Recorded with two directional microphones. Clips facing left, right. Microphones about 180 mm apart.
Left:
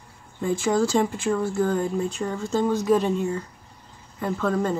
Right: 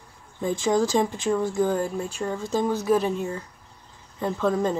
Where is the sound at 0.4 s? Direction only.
15° right (ahead or behind).